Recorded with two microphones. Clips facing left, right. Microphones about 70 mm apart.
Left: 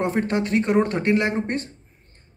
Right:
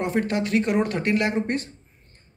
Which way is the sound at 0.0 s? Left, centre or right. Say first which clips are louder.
Left 1 dB; left.